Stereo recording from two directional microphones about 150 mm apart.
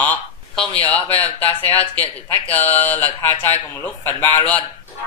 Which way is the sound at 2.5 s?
10° left (ahead or behind).